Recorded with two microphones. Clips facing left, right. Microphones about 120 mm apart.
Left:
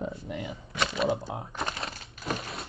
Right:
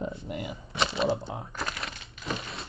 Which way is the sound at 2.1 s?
45° left (ahead or behind).